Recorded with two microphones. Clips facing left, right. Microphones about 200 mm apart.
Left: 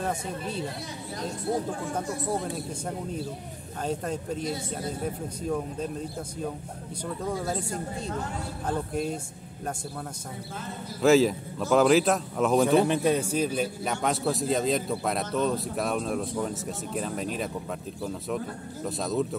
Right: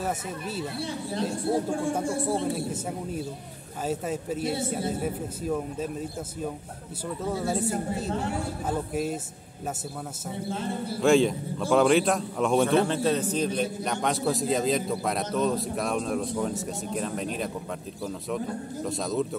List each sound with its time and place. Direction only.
0.0 s a man's voice: 5° right (ahead or behind)
1.5 s speech: 30° right (ahead or behind)
3.8 s a man's voice: 5° right (ahead or behind)
10.5 s speech: 30° right (ahead or behind)
11.0 s a man's voice: 5° left (ahead or behind)
12.8 s a man's voice: 15° left (ahead or behind)
18.9 s a man's voice: centre (ahead or behind)